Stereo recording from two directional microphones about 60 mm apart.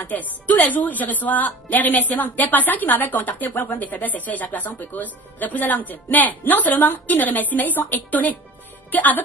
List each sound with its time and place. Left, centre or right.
0.0 s a woman's voice: left